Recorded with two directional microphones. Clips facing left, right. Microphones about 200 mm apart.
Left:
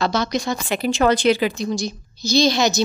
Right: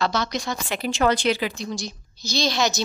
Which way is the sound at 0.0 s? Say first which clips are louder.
Left 4 dB; 15° left (ahead or behind).